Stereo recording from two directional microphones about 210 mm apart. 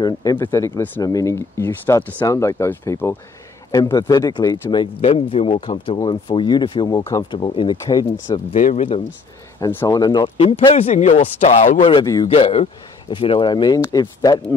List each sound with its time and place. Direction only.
0.0 s speech: 15° left (ahead or behind)
8.5 s speech: 35° left (ahead or behind)
9.6 s speech: 15° left (ahead or behind)